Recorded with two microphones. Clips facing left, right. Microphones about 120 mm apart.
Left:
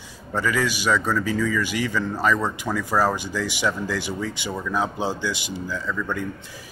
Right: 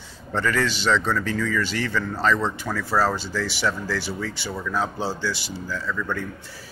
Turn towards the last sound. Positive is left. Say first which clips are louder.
# even
turn(degrees=15)  # may be behind; listen again after turning